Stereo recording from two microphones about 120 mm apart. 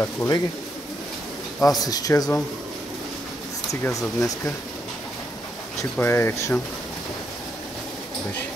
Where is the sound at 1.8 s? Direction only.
30° left (ahead or behind).